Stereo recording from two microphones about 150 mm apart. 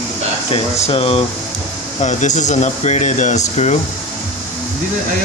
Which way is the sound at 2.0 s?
55° left (ahead or behind).